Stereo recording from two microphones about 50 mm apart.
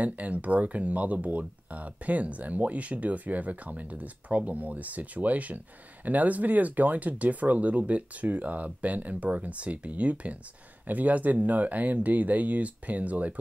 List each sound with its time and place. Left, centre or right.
0.0 s speech: right